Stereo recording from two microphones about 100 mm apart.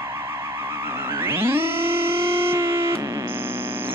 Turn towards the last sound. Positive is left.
turn(degrees=-25)  # may be behind; listen again after turning